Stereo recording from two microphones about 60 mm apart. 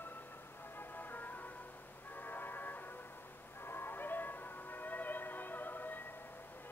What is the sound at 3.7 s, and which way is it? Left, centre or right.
Music, left.